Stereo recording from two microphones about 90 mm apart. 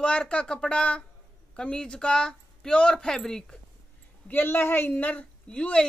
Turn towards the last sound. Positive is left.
turn(degrees=10)  # may be behind; listen again after turning